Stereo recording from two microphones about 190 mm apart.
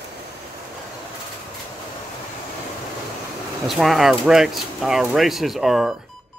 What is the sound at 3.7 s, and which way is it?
Speech, centre (ahead or behind).